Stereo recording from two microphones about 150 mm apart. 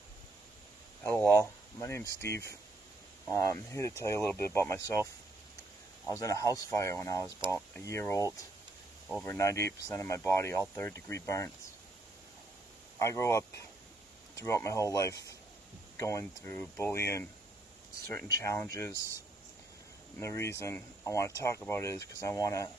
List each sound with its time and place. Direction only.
1.0 s speech: 20° left (ahead or behind)
6.0 s speech: 20° left (ahead or behind)
13.0 s speech: 20° left (ahead or behind)
18.4 s speech: 20° left (ahead or behind)
20.2 s speech: 20° left (ahead or behind)